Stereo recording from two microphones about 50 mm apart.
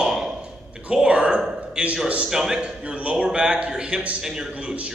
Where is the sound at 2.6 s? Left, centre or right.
Right.